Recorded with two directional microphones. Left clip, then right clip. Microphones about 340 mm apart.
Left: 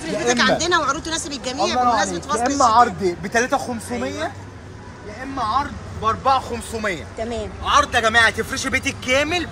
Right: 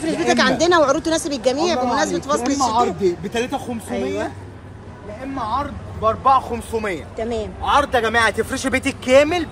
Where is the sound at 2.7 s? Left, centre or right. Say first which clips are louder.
Left 2 dB; centre.